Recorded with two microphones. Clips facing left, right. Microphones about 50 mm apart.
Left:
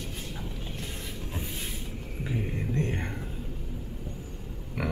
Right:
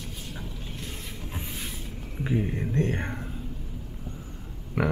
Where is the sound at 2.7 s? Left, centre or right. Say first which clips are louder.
Right 4 dB; right.